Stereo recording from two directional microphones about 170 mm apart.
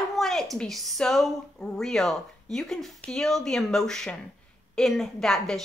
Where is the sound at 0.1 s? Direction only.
Centre (ahead or behind).